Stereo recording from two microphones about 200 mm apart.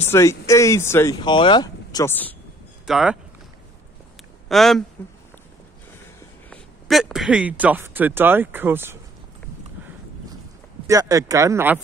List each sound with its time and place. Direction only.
0.1 s speech: 15° left (ahead or behind)
2.9 s speech: 5° right (ahead or behind)
4.5 s speech: centre (ahead or behind)
6.5 s speech: centre (ahead or behind)
10.9 s speech: 15° right (ahead or behind)